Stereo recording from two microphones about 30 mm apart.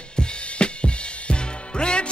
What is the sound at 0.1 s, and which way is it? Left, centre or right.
Music, left.